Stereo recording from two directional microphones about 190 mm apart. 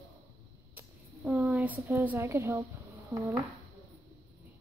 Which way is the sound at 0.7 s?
10° right (ahead or behind).